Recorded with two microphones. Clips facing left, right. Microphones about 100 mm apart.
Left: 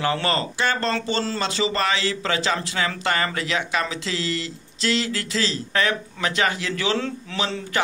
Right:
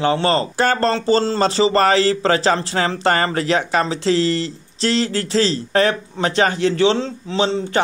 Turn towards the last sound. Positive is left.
turn(degrees=-25)  # may be behind; listen again after turning